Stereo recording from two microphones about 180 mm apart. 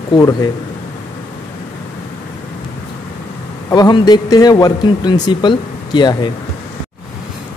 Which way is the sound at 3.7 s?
25° left (ahead or behind).